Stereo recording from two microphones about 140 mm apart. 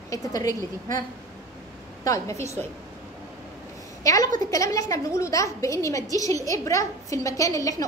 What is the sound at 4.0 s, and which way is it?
A woman's voice, 25° left (ahead or behind).